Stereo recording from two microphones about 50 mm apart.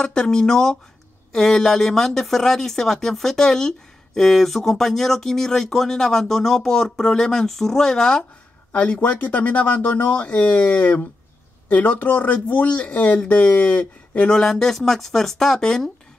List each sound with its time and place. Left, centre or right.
0.0 s speech: centre
8.7 s speech: left
10.2 s speech: left
14.3 s speech: centre